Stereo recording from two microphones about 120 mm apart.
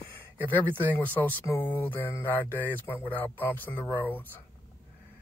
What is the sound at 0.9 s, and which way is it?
Speech, 15° left (ahead or behind).